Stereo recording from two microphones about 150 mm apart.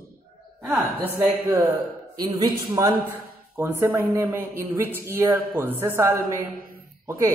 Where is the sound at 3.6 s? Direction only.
15° right (ahead or behind).